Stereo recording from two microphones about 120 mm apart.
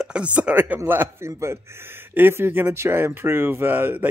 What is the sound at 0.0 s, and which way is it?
Speech, 10° right (ahead or behind).